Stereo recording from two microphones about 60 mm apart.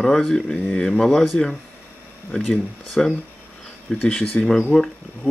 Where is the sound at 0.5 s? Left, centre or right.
Left.